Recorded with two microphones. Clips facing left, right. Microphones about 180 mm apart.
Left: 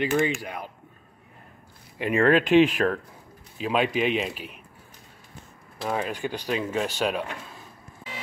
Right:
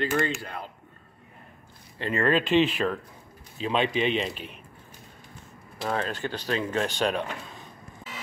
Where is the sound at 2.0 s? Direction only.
15° left (ahead or behind).